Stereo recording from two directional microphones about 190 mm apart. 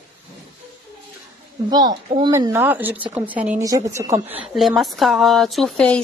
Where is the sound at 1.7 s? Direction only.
20° right (ahead or behind).